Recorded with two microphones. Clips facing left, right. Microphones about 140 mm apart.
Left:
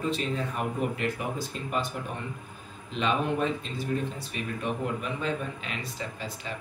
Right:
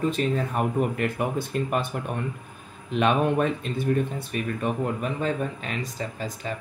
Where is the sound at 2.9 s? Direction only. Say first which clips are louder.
Right 5 dB; 60° right (ahead or behind).